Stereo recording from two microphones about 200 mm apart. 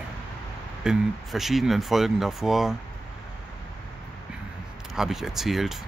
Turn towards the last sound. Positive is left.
turn(degrees=0)  # may be behind; listen again after turning